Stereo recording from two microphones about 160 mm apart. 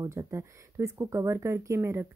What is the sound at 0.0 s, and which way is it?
Speech, 20° right (ahead or behind).